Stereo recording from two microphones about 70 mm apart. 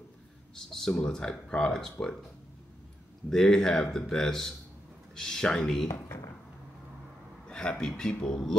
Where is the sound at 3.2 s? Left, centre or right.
Centre.